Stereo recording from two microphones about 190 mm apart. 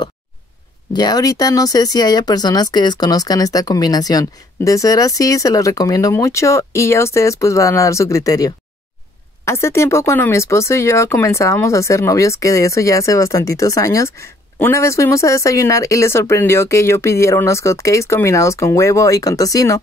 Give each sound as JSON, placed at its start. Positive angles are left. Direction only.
{"t": 0.9, "sound": "speech", "side_deg": 20}